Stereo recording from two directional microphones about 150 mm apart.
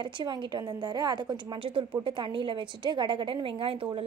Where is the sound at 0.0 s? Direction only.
30° right (ahead or behind).